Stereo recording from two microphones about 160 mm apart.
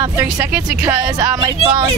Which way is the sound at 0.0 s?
20° right (ahead or behind).